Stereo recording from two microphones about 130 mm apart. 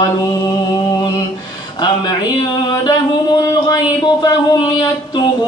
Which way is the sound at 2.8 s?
30° left (ahead or behind).